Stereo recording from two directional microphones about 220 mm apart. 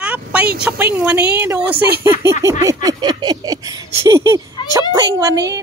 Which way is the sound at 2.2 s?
15° right (ahead or behind).